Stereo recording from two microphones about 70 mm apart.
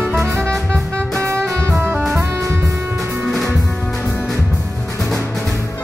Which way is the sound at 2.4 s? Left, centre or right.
Right.